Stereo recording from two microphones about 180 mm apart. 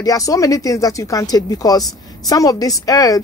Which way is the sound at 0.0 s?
20° left (ahead or behind).